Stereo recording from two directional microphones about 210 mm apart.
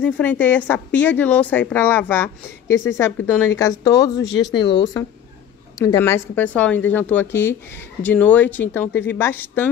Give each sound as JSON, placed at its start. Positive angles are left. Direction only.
{"t": 0.0, "sound": "a woman's voice", "side_deg": 5}